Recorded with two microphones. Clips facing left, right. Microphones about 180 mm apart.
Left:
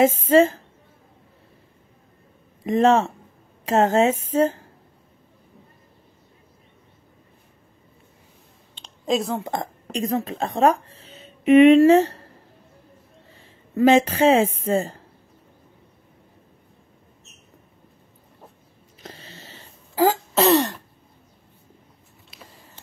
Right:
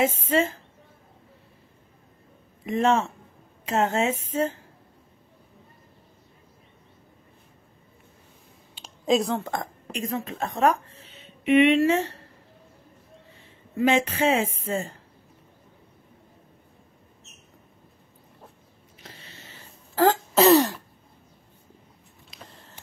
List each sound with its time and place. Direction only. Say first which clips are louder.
0.0 s speech: left 7 dB; 40° left (ahead or behind)
2.6 s speech: left 5 dB; 40° left (ahead or behind)
8.7 s a sound: right 1 dB; 5° right (ahead or behind)
9.4 s speech: left 3 dB; 25° left (ahead or behind)
11.4 s speech: left 7 dB; 45° left (ahead or behind)
13.7 s speech: left 6 dB; 40° left (ahead or behind)
19.0 s a sound: left 6 dB; 35° left (ahead or behind)
20.0 s throat clearing: even; 5° left (ahead or behind)
22.3 s a sound: even; 5° left (ahead or behind)